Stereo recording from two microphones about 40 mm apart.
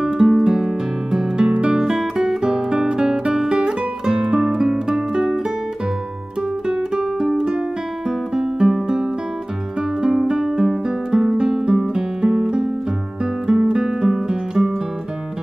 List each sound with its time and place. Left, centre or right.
0.0 s music: centre
1.8 s music: centre
6.7 s music: centre